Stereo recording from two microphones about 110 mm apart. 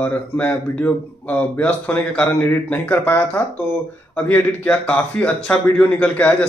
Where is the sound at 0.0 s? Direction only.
15° left (ahead or behind).